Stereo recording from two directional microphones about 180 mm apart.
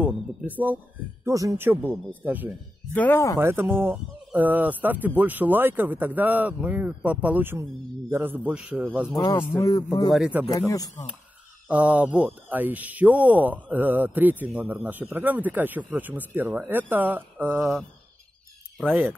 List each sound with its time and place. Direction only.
0.0 s speech: 10° right (ahead or behind)
2.9 s speech: 10° left (ahead or behind)
3.3 s speech: 15° right (ahead or behind)
9.1 s a man's voice: 20° left (ahead or behind)
10.1 s speech: 5° right (ahead or behind)
11.6 s speech: 5° right (ahead or behind)
18.9 s speech: 10° right (ahead or behind)